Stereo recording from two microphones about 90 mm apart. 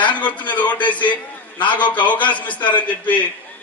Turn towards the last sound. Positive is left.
turn(degrees=15)  # may be behind; listen again after turning